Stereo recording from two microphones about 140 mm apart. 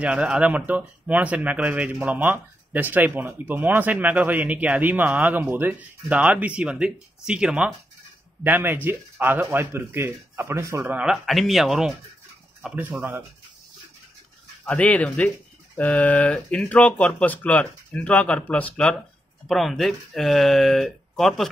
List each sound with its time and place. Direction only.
0.0 s speech: 10° right (ahead or behind)
11.0 s speech: centre (ahead or behind)
12.9 s speech: 15° right (ahead or behind)
14.6 s speech: 10° left (ahead or behind)